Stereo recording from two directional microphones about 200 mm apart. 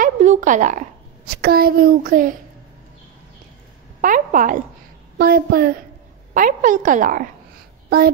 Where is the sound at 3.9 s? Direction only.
40° right (ahead or behind).